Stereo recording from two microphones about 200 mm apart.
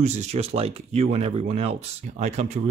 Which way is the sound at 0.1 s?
35° right (ahead or behind).